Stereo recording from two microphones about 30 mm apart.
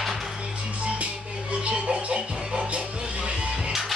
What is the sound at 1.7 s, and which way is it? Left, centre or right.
Music, right.